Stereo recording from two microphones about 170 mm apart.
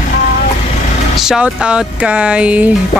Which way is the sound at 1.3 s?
5° right (ahead or behind).